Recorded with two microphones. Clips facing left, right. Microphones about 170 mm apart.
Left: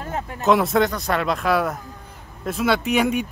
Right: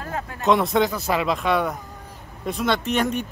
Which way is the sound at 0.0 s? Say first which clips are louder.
Left 2 dB; 25° left (ahead or behind).